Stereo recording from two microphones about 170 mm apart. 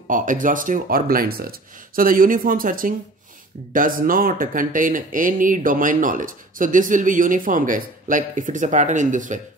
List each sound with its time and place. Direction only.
0.1 s speech: 50° right (ahead or behind)